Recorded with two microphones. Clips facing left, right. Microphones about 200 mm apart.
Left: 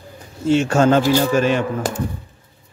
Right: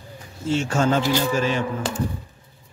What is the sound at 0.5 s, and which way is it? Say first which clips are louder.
Speech: left 6 dB; 65° left (ahead or behind).